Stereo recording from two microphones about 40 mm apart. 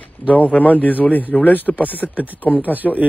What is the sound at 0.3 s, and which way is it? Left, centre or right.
A man's voice, left.